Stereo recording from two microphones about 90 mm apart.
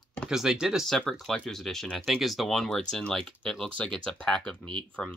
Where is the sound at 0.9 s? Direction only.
5° left (ahead or behind).